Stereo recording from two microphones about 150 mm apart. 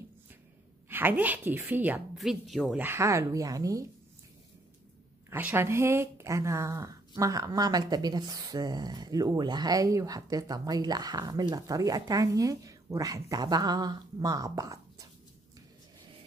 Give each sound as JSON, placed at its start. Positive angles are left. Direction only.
{"t": 0.8, "sound": "a woman's voice", "side_deg": -15}
{"t": 2.1, "sound": "a woman's voice", "side_deg": 0}
{"t": 5.3, "sound": "speech", "side_deg": -15}